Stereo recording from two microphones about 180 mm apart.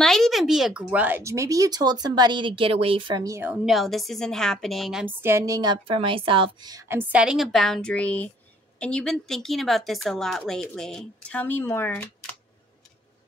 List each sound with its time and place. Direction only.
0.0 s speech: centre (ahead or behind); by 3.5 s 15° right (ahead or behind)
3.5 s a woman's voice: centre (ahead or behind)